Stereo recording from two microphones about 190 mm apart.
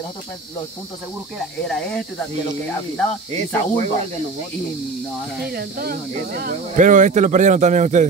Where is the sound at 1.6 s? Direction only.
5° left (ahead or behind).